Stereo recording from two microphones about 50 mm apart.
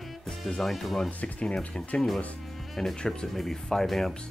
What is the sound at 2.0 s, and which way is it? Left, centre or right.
Speech, centre.